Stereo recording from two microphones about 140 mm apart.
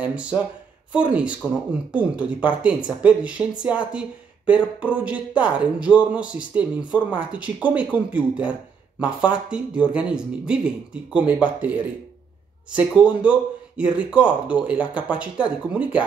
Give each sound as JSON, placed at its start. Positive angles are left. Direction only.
{"t": 0.0, "sound": "speech", "side_deg": -10}